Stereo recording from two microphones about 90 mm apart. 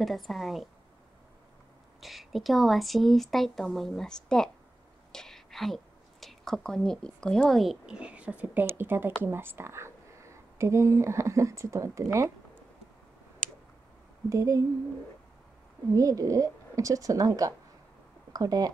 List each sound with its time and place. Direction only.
0.0 s a woman's voice: centre (ahead or behind)
2.0 s a woman's voice: centre (ahead or behind)
5.1 s a sound: 5° left (ahead or behind)
6.2 s speech: 5° left (ahead or behind)
7.8 s speech: 10° right (ahead or behind); by 12.3 s 35° right (ahead or behind)
14.3 s speech: 35° right (ahead or behind)
15.9 s speech: 40° right (ahead or behind)